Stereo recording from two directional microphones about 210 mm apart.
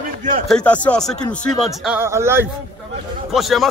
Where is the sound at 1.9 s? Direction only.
10° right (ahead or behind).